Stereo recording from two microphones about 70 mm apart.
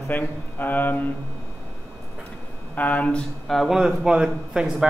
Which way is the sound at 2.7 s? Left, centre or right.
Left.